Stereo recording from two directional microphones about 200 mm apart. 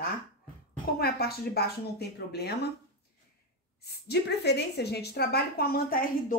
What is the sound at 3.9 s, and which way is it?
A woman's voice, 55° left (ahead or behind).